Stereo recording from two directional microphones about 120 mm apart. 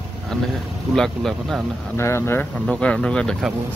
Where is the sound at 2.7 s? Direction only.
5° left (ahead or behind).